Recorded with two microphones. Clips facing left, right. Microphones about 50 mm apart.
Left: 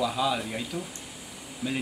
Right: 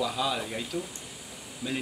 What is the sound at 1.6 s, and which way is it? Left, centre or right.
Speech, left.